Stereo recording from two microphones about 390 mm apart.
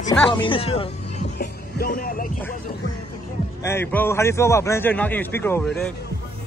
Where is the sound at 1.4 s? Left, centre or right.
Left.